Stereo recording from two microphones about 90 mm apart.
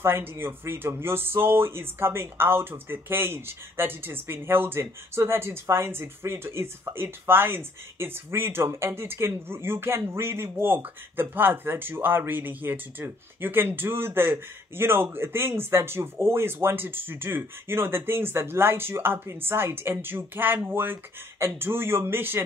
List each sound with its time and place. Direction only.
0.0 s speech: 25° right (ahead or behind)